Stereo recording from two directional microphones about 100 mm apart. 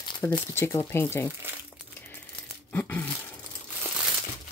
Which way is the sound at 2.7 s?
20° left (ahead or behind).